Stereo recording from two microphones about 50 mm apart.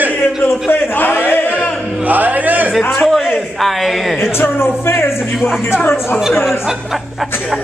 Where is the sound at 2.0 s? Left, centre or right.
Right.